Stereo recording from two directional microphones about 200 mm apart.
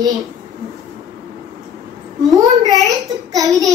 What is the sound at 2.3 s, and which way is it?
A child's voice, 15° right (ahead or behind).